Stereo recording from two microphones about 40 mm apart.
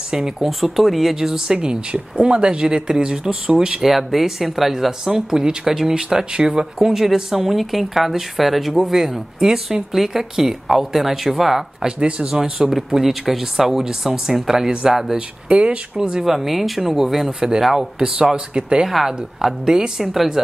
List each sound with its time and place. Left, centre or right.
0.1 s speech: centre
0.5 s speech: centre
1.1 s speech: centre
3.5 s speech: centre
3.9 s speech: centre
12.0 s speech: right
15.4 s speech: right
16.3 s speech: centre; by 18.9 s right
18.9 s speech: centre